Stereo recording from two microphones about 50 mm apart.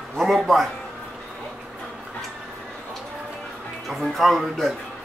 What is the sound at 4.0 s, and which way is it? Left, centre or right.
Speech, centre.